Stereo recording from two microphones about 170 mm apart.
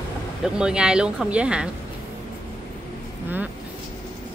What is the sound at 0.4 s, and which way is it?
Speech, 5° right (ahead or behind).